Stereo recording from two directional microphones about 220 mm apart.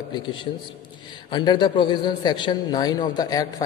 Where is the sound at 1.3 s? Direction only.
20° left (ahead or behind).